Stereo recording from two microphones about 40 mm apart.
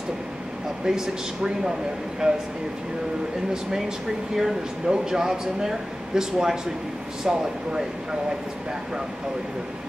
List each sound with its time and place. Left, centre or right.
0.8 s speech: centre
4.4 s speech: centre